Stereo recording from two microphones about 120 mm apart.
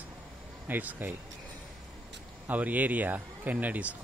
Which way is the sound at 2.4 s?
15° right (ahead or behind).